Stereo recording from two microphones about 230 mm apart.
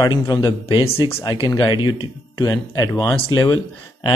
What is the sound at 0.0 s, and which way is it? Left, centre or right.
Speech, centre.